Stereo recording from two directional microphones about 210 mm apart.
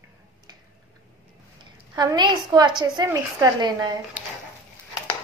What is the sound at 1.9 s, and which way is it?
A woman's voice, 20° right (ahead or behind).